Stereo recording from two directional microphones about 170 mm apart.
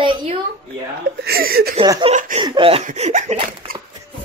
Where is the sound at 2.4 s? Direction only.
30° right (ahead or behind).